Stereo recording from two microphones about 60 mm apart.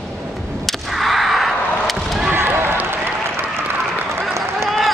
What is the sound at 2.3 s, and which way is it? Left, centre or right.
Basketball bounce, right.